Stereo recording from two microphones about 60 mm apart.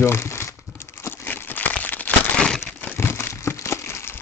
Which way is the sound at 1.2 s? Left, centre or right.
Left.